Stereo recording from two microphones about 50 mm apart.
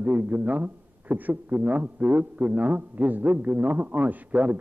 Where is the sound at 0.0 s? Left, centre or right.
Right.